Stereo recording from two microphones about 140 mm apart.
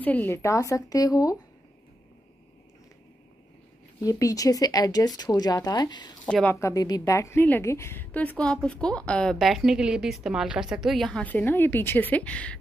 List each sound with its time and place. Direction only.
0.0 s speech: 15° left (ahead or behind)
4.0 s speech: 25° left (ahead or behind)
6.2 s a woman's voice: 5° left (ahead or behind)
6.5 s a woman's voice: 25° left (ahead or behind)